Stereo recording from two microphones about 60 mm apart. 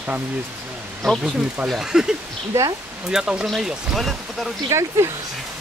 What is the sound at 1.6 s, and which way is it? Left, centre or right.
Speech, centre.